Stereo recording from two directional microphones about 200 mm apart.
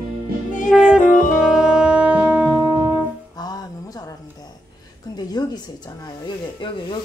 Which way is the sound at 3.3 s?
20° left (ahead or behind).